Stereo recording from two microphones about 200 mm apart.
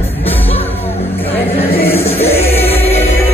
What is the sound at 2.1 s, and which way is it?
Choir, 30° left (ahead or behind).